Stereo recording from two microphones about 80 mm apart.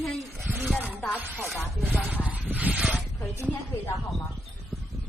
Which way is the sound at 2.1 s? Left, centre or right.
Right.